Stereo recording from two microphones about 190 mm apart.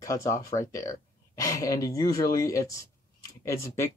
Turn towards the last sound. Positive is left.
turn(degrees=15)  # may be behind; listen again after turning